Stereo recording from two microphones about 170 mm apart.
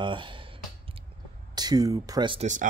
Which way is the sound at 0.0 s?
30° right (ahead or behind).